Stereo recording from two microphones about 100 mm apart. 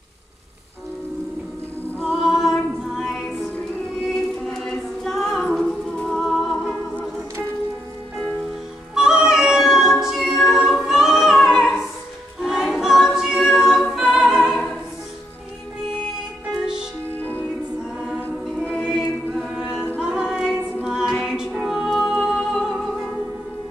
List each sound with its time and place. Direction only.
2.2 s music: 5° right (ahead or behind)
4.1 s choir: 5° left (ahead or behind)
8.9 s cat: 5° right (ahead or behind)
12.4 s music: 5° right (ahead or behind)
17.2 s music: 20° left (ahead or behind)
18.8 s choir: 5° right (ahead or behind)
19.6 s a capella: 20° left (ahead or behind)
20.0 s music: 10° right (ahead or behind)
20.5 s a capella: 15° right (ahead or behind)
21.1 s music: 5° right (ahead or behind)